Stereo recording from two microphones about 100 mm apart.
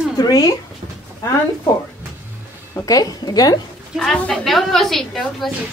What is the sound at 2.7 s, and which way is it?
Speech, 35° left (ahead or behind).